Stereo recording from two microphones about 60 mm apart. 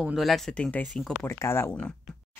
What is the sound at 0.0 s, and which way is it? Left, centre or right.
Speech, centre.